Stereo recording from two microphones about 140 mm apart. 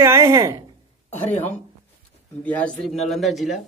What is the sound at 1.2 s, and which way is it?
Speech, 15° left (ahead or behind).